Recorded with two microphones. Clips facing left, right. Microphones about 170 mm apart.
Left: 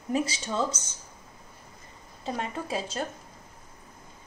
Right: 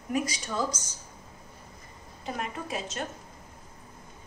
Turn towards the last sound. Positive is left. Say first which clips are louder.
# left 3 dB
turn(degrees=30)  # may be behind; listen again after turning